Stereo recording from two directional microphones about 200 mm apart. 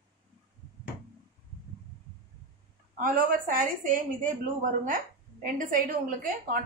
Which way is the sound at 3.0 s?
45° right (ahead or behind).